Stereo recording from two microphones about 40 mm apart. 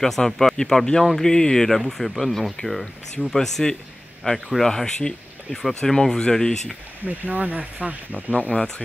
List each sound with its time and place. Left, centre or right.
0.0 s speech: centre
7.1 s speech: right
8.4 s speech: left